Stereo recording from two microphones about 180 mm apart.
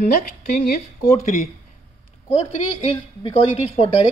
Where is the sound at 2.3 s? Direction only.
35° left (ahead or behind).